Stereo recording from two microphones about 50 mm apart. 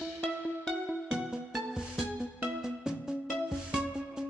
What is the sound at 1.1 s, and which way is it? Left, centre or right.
Music, centre.